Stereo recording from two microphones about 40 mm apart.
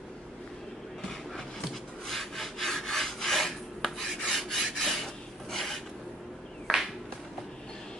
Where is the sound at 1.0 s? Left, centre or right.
Centre.